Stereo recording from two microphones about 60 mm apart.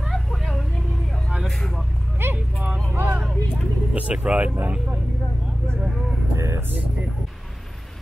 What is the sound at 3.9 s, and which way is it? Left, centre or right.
Vehicle, centre.